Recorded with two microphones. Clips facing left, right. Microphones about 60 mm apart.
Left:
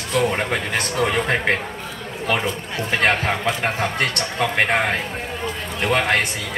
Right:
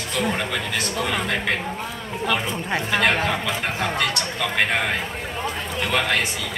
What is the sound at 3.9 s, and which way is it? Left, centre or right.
Speech, left.